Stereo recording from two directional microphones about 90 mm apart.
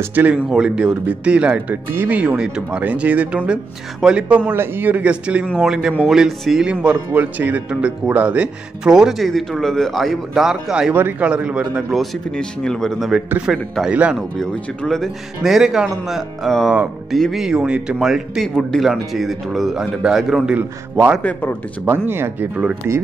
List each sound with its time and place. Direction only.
0.0 s speech: 20° right (ahead or behind)
0.5 s speech: 10° right (ahead or behind)
4.5 s speech: 25° right (ahead or behind)
12.0 s speech: 5° left (ahead or behind)
14.5 s speech: 5° left (ahead or behind)
20.5 s speech: 15° right (ahead or behind)
21.2 s speech: 15° left (ahead or behind)
21.8 s speech: 25° right (ahead or behind)